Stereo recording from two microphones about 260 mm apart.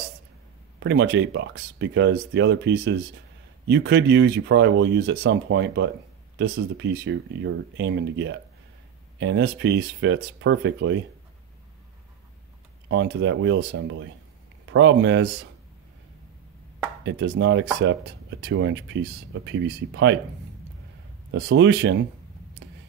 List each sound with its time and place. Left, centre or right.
0.7 s speech: right
12.8 s speech: right
17.0 s speech: right
21.3 s speech: right